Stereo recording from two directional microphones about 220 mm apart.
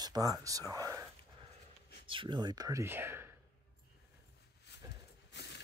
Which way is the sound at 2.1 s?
20° right (ahead or behind).